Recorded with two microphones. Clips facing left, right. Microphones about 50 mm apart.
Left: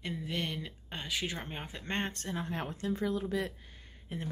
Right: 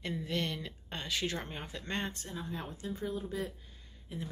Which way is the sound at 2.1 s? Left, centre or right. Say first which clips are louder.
Left 4 dB; left.